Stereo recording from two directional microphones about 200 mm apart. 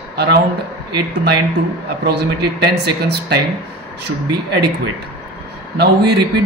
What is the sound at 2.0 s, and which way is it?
A man's voice, 55° right (ahead or behind).